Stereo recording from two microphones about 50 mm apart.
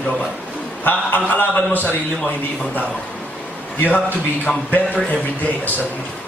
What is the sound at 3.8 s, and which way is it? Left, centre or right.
A man's voice, left.